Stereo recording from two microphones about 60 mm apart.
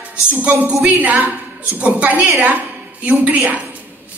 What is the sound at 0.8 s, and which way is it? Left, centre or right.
A woman's voice, right.